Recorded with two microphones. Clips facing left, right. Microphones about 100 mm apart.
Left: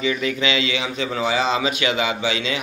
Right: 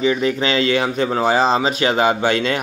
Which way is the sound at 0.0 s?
35° right (ahead or behind).